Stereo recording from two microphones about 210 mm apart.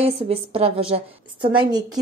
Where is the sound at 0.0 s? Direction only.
30° right (ahead or behind).